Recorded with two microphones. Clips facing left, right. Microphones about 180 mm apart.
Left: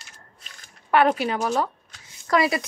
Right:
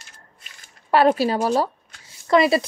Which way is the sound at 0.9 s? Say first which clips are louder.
Right 3 dB; 35° right (ahead or behind).